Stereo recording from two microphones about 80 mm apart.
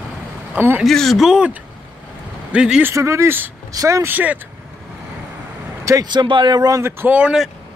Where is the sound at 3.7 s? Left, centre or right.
Right.